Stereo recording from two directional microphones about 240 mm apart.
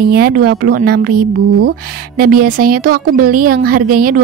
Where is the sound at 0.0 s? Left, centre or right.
Right.